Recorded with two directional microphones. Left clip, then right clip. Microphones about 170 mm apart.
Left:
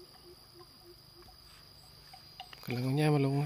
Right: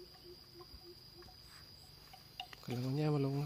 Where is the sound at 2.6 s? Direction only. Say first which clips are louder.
Left 7 dB; 15° left (ahead or behind).